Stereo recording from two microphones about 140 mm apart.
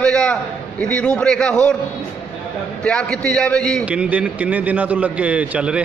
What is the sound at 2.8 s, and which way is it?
A man's voice, 5° left (ahead or behind).